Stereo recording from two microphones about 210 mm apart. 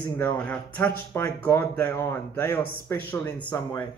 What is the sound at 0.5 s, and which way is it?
Speech, 10° left (ahead or behind).